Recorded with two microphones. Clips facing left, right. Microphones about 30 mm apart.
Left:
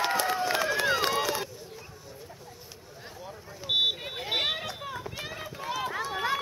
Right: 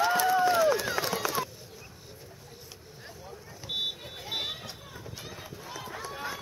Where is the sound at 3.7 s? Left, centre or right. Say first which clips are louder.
Left 7 dB; left.